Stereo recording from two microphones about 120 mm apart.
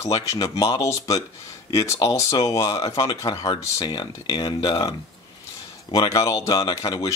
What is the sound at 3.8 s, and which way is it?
A man's voice, 45° left (ahead or behind).